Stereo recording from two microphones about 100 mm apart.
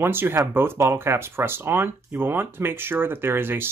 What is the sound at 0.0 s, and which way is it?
Speech, 20° right (ahead or behind).